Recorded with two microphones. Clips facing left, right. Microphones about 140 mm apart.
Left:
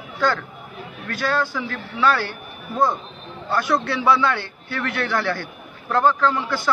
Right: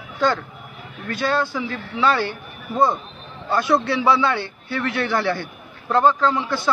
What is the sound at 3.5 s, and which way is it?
A man's voice, 10° right (ahead or behind).